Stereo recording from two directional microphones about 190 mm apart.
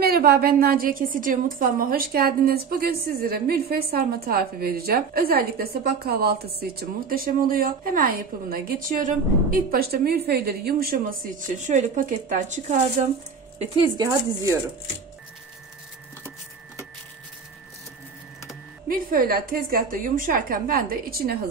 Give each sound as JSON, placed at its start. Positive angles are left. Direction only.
{"t": 0.0, "sound": "a woman's voice", "side_deg": -55}
{"t": 13.6, "sound": "speech", "side_deg": -25}
{"t": 18.9, "sound": "a woman's voice", "side_deg": -50}